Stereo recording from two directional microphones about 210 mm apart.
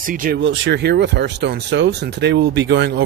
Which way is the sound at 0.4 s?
55° right (ahead or behind).